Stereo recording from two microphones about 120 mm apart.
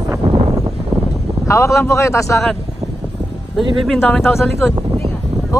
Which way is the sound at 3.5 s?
Centre (ahead or behind).